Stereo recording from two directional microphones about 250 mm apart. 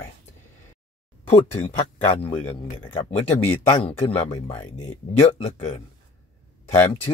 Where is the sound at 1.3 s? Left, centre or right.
Left.